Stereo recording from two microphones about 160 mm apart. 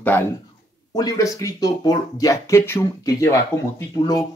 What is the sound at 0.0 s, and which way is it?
Speech, 10° left (ahead or behind).